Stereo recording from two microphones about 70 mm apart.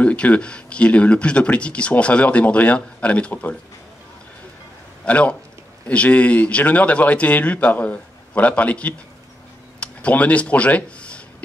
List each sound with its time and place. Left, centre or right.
0.0 s speech: centre
5.0 s a man's voice: centre
9.8 s a sound: centre